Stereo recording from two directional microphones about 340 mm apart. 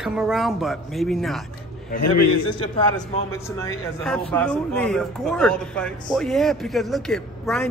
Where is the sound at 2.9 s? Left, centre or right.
Centre.